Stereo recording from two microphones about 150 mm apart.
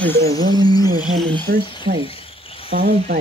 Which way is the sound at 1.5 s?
70° right (ahead or behind).